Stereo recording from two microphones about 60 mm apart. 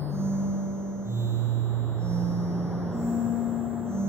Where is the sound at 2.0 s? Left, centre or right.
Right.